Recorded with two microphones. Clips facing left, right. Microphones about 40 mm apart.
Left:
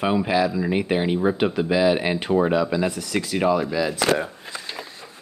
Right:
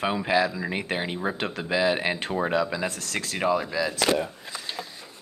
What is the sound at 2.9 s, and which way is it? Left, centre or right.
Speech, centre.